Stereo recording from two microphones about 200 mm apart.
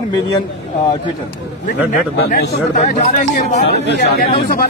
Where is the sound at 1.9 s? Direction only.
45° left (ahead or behind).